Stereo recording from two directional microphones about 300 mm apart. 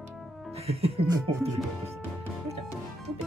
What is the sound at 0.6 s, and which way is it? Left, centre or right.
Music, centre.